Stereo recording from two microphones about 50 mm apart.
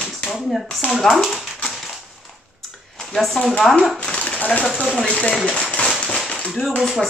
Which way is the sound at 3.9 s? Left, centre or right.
Centre.